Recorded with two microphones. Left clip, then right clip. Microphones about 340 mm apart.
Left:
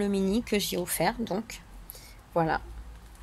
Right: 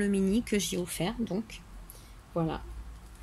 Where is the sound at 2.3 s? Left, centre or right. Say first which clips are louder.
Left 7 dB; left.